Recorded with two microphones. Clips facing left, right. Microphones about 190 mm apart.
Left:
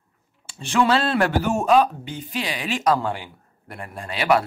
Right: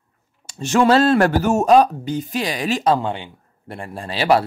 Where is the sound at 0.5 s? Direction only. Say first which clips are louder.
Right 5 dB; 45° right (ahead or behind).